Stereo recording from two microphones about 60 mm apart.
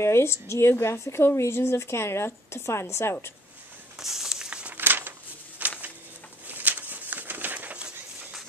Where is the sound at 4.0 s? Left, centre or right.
Centre.